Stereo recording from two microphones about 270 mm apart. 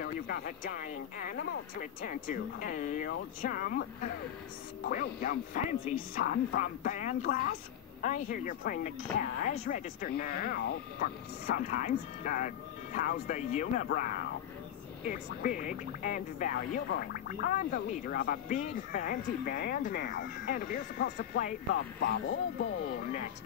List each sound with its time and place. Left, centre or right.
0.0 s speech: left
4.9 s speech: left